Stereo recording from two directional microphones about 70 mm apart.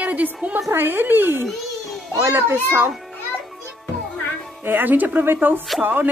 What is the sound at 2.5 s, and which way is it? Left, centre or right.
Speech, right.